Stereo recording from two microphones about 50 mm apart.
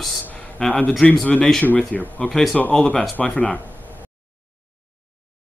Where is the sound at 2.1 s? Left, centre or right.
Centre.